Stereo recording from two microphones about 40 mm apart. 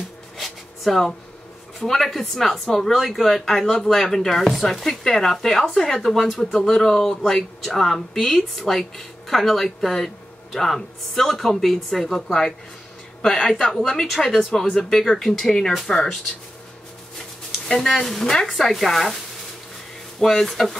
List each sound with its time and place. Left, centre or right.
0.4 s a sound: centre
1.8 s speech: centre
13.7 s speech: centre
14.7 s speech: centre
17.6 s speech: centre
20.2 s speech: centre